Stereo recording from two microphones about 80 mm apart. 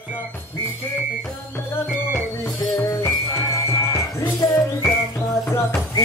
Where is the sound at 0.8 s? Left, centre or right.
Left.